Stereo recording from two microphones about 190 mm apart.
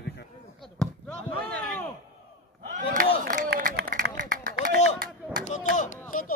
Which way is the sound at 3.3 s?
50° right (ahead or behind).